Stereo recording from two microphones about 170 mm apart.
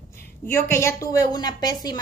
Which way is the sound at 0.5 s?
15° left (ahead or behind).